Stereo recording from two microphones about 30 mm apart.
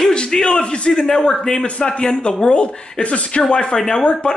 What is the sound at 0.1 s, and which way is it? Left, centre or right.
A man's voice, left.